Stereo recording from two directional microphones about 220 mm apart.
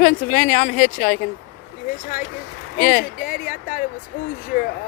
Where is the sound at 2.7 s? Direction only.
40° left (ahead or behind).